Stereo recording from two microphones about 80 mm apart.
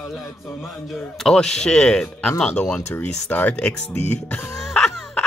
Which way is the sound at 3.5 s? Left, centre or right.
Centre.